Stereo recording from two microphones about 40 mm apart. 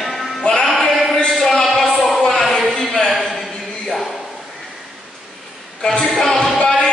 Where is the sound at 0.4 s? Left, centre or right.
Centre.